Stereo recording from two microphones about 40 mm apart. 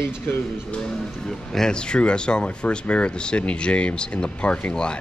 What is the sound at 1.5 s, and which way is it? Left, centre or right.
Speech, centre.